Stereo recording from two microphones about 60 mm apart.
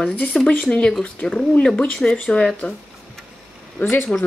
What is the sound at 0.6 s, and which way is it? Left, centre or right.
Speech, centre.